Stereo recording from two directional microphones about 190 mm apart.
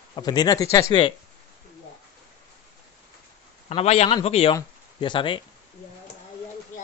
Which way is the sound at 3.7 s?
35° left (ahead or behind).